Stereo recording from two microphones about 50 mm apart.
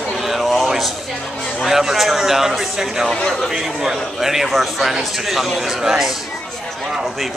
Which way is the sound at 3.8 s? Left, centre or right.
Centre.